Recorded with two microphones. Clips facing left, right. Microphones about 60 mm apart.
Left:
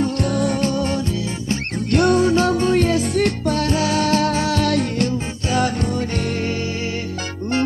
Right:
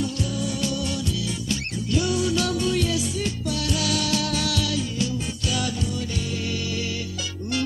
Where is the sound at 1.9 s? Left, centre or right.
Left.